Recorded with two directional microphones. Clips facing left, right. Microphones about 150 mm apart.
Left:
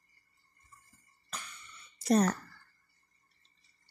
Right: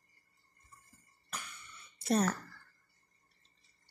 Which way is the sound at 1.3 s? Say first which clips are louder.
Even; 10° right (ahead or behind).